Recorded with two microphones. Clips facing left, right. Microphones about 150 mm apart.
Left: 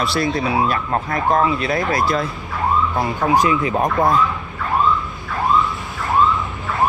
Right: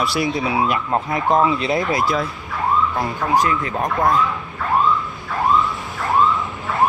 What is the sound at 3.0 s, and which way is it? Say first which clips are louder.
Speech: left 2 dB; 15° left (ahead or behind).